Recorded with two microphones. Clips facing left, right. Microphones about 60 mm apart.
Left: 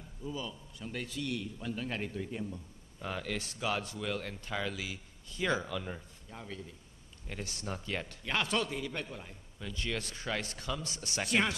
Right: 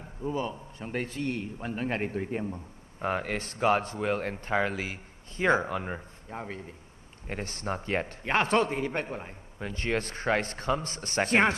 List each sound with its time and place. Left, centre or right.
0.0 s a man's voice: right